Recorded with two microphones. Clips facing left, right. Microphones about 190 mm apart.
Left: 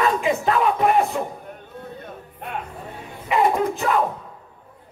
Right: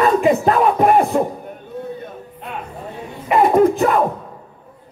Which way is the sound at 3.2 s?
50° right (ahead or behind).